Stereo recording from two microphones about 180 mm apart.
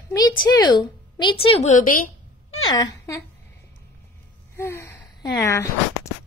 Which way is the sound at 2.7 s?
20° left (ahead or behind).